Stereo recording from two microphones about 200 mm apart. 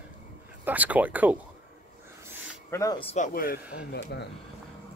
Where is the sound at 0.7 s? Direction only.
10° right (ahead or behind).